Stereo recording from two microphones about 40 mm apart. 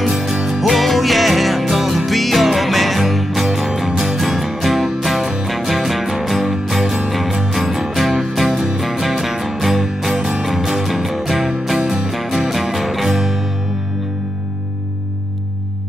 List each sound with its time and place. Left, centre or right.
0.0 s music: centre
11.8 s music: centre
12.1 s music: centre